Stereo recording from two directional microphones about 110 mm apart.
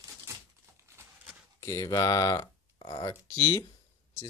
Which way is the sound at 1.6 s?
30° left (ahead or behind).